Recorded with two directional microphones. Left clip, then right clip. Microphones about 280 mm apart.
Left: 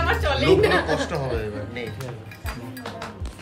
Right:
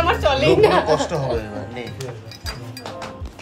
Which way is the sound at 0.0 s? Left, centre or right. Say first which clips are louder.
Right 5 dB; centre.